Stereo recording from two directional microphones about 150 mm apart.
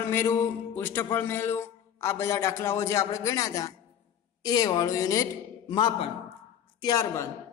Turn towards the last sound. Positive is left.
turn(degrees=20)  # may be behind; listen again after turning